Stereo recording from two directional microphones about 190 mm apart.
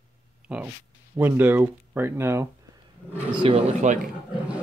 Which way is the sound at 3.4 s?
30° right (ahead or behind).